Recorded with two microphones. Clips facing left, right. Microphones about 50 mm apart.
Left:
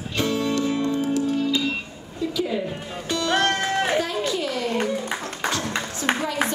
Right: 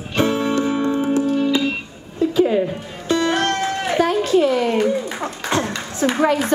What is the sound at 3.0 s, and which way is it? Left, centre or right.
Music, right.